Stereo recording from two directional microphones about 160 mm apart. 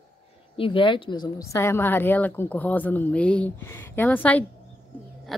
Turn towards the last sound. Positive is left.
turn(degrees=10)  # may be behind; listen again after turning